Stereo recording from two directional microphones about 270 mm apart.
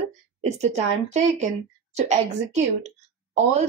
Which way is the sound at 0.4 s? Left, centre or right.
Right.